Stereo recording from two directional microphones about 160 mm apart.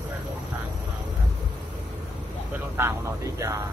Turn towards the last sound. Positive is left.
turn(degrees=-20)  # may be behind; listen again after turning